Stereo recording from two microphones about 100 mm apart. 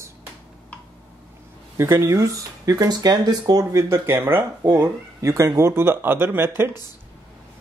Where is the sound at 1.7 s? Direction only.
25° right (ahead or behind).